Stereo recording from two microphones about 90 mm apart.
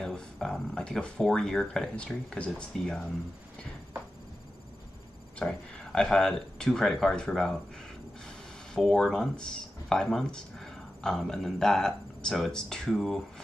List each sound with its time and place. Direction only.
0.0 s speech: 5° left (ahead or behind)
5.4 s speech: 10° left (ahead or behind)
8.7 s speech: 5° left (ahead or behind)